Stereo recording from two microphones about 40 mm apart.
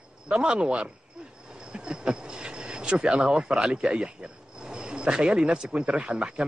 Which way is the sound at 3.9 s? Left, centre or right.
Right.